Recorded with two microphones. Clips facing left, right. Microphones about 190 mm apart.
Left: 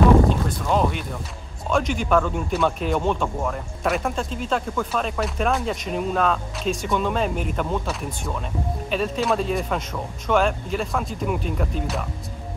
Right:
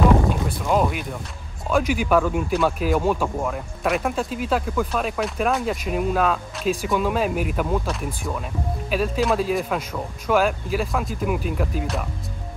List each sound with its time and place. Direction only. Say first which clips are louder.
0.7 s speech: right 1 dB; 5° right (ahead or behind)